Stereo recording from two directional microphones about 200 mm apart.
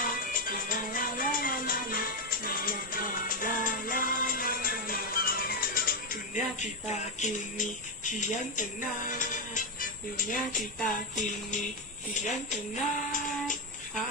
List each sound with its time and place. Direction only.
0.0 s music: 45° left (ahead or behind)
6.9 s speech: 35° left (ahead or behind)